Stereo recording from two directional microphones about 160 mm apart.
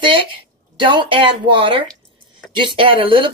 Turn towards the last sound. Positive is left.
turn(degrees=-30)  # may be behind; listen again after turning